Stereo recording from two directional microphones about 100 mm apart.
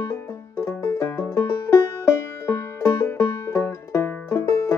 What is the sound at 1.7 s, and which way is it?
Music, 30° left (ahead or behind).